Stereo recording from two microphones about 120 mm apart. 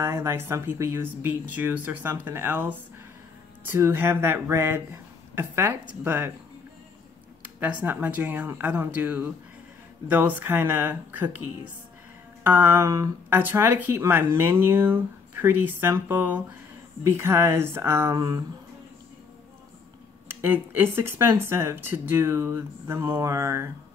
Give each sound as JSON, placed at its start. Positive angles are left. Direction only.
{"t": 0.0, "sound": "speech", "side_deg": -20}
{"t": 7.6, "sound": "speech", "side_deg": -15}
{"t": 18.1, "sound": "speech", "side_deg": -35}
{"t": 20.2, "sound": "speech", "side_deg": -20}